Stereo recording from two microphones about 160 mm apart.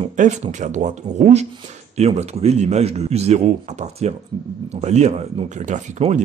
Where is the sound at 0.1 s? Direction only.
50° right (ahead or behind).